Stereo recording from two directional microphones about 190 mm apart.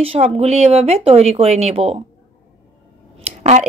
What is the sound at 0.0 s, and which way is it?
Speech, 30° right (ahead or behind).